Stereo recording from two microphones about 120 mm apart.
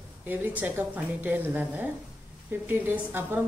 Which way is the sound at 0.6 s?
15° right (ahead or behind).